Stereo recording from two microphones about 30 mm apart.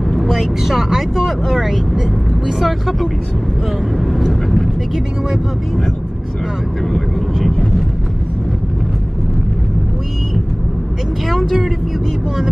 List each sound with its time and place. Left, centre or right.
0.2 s speech: centre
6.9 s speech: centre
11.3 s speech: centre